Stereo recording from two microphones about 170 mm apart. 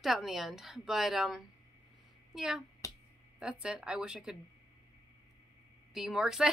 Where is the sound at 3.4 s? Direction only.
5° right (ahead or behind).